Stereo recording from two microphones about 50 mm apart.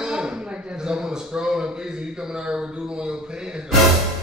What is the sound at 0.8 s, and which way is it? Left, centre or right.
A man's voice, centre.